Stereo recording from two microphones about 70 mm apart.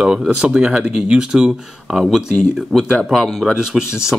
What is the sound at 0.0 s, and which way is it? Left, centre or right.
Speech, centre.